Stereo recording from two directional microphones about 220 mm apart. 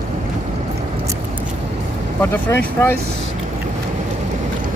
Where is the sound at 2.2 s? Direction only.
10° left (ahead or behind).